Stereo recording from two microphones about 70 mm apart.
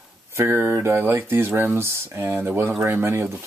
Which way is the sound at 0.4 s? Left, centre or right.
Right.